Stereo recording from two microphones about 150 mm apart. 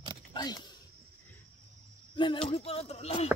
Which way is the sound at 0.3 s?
25° left (ahead or behind).